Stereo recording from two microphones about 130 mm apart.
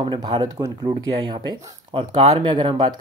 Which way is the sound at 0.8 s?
45° right (ahead or behind).